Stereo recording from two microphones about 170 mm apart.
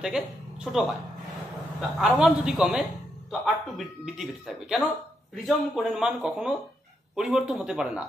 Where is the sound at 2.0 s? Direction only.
5° right (ahead or behind).